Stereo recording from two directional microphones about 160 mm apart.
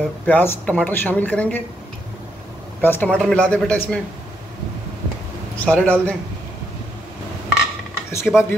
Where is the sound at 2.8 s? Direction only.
10° left (ahead or behind).